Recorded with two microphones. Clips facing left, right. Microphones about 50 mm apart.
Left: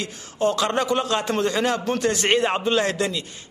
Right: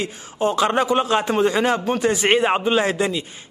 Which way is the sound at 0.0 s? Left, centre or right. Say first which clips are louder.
Right 1 dB; centre.